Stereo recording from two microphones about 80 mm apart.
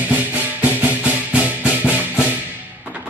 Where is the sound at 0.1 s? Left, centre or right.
Right.